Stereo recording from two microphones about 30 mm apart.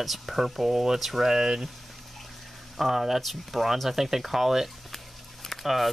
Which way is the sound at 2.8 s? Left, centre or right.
Centre.